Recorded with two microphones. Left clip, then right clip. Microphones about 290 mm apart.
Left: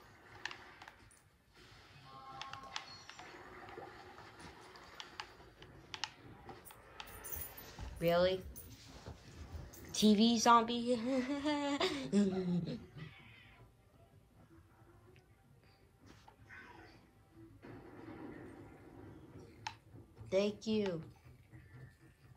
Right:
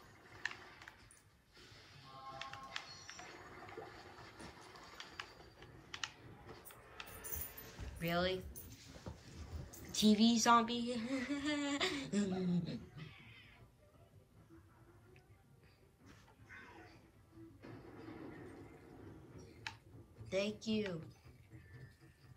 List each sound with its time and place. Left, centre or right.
2.0 s music: centre
2.3 s music: centre
8.0 s a sound: centre
9.8 s speech: centre
17.6 s music: centre
19.7 s a sound: centre
20.2 s speech: centre